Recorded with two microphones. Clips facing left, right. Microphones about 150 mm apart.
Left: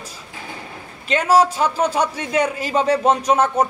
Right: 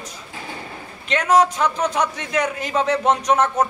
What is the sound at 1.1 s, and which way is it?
A man's voice, 30° left (ahead or behind).